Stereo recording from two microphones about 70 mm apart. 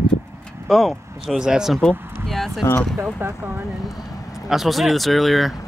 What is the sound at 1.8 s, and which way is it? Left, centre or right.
Speech, centre.